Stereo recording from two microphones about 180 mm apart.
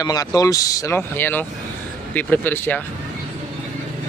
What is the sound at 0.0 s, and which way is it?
Speech, 20° left (ahead or behind).